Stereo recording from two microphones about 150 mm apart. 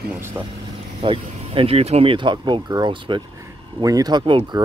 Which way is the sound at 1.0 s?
35° right (ahead or behind).